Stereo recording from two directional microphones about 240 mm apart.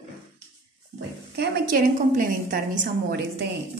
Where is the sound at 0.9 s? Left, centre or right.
Right.